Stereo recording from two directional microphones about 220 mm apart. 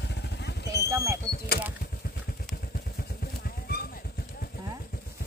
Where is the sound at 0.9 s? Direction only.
15° right (ahead or behind).